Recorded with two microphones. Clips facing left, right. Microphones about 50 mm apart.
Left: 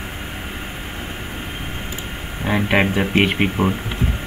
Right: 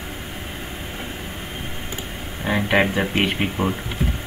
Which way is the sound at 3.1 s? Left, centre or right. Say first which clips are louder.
Left 4 dB; left.